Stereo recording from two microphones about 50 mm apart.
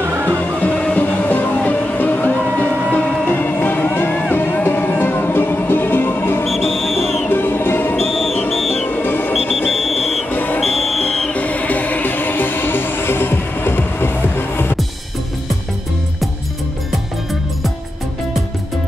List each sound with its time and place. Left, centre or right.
0.0 s music: right
0.9 s music: left
3.3 s music: left
6.4 s music: centre
7.2 s music: left
8.0 s music: centre
8.8 s music: left
9.7 s a sound: centre
10.3 s music: left
10.6 s music: centre
11.3 s music: left